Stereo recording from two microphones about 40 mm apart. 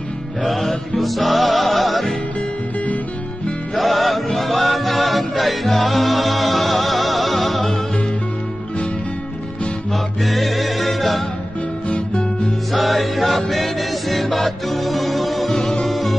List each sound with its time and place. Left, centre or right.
0.4 s music: centre
3.7 s chant: centre
9.9 s music: centre
11.9 s music: left
12.7 s music: centre